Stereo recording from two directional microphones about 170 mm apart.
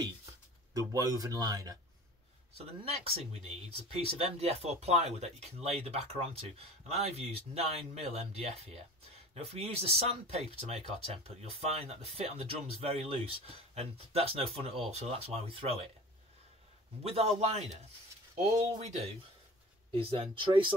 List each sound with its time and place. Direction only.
0.7 s speech: 20° right (ahead or behind)
2.5 s speech: 35° right (ahead or behind)
17.0 s speech: 35° right (ahead or behind)